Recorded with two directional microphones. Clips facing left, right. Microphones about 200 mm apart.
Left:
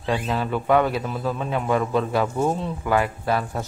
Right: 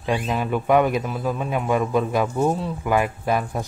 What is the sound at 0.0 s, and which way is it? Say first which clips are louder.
Speech: right 1 dB; 15° right (ahead or behind).